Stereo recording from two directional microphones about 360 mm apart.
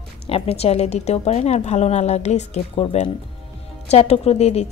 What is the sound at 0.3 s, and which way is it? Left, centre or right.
A woman's voice, centre.